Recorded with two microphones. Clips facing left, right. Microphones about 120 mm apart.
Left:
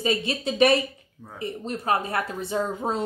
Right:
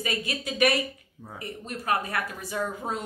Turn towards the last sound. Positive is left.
turn(degrees=30)  # may be behind; listen again after turning